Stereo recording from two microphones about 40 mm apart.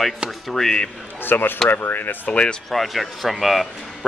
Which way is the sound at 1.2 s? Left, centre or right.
Left.